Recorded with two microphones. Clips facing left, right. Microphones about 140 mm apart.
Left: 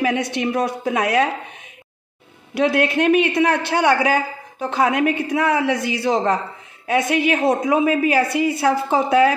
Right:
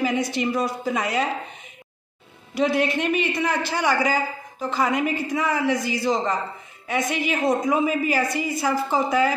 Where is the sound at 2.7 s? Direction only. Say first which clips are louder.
Left 3 dB; centre (ahead or behind).